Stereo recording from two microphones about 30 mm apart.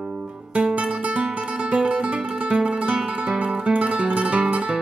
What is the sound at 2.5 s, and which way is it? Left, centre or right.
Guitar, right.